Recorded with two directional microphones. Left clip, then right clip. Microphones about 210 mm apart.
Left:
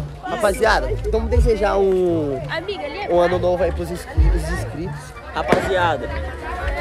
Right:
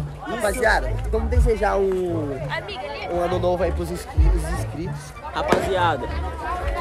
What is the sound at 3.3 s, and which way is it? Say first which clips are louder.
Speech: left 3 dB; centre (ahead or behind).